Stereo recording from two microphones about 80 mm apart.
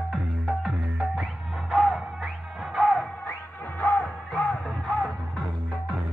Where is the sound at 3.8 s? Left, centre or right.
Centre.